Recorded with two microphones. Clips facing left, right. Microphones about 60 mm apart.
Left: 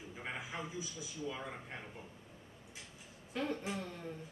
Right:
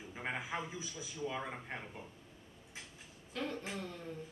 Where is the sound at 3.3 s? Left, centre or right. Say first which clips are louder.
Left 2 dB; centre.